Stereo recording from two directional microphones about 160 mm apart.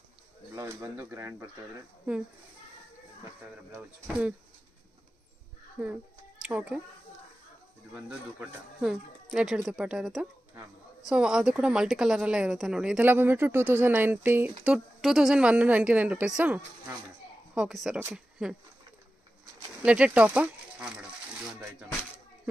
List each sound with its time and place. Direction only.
0.6 s speech: 20° right (ahead or behind)
3.7 s speech: 10° right (ahead or behind)
5.8 s speech: 10° right (ahead or behind)
7.9 s speech: 5° right (ahead or behind)
19.8 s speech: 10° right (ahead or behind)